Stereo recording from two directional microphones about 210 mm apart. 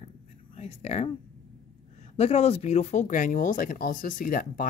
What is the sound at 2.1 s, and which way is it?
Speech, 30° left (ahead or behind).